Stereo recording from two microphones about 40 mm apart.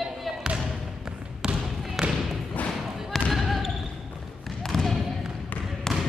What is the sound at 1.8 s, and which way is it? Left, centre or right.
Thump, centre.